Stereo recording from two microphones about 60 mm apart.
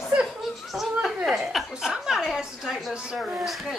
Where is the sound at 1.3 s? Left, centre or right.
Centre.